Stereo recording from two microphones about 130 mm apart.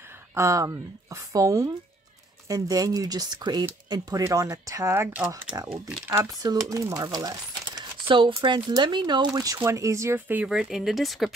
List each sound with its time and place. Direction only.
0.3 s speech: 25° right (ahead or behind)
6.4 s speech: 25° right (ahead or behind); by 11.3 s centre (ahead or behind)